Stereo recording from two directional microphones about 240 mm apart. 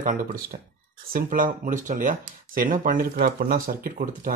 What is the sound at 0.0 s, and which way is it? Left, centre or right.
Speech, right.